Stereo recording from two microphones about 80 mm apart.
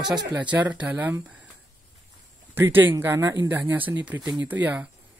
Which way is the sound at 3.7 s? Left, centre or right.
Right.